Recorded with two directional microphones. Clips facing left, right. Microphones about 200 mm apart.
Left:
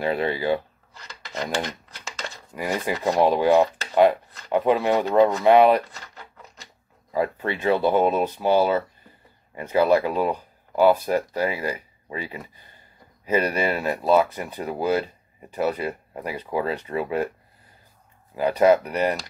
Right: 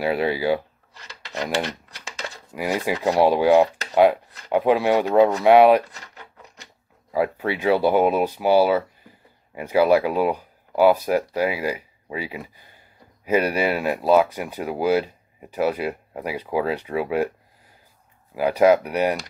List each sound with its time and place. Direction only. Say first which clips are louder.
0.0 s speech: right 2 dB; 10° right (ahead or behind)
7.1 s speech: right 2 dB; 10° right (ahead or behind)
18.3 s speech: right 1 dB; 10° right (ahead or behind)